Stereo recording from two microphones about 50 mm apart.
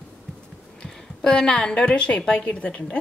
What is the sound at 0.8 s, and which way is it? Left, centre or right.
A woman's voice, centre.